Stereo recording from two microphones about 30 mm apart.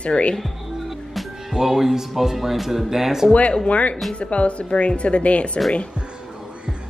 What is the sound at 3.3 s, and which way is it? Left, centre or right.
Speech, left.